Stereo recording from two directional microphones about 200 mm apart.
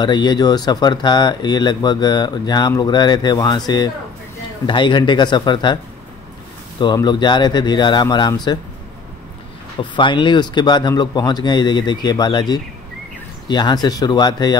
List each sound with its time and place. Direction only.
0.0 s speech: 20° left (ahead or behind)
6.8 s speech: 20° left (ahead or behind)
9.8 s speech: 25° left (ahead or behind)